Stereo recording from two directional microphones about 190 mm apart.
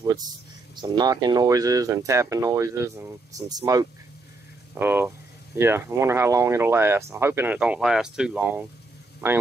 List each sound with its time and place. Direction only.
0.7 s speech: 20° right (ahead or behind)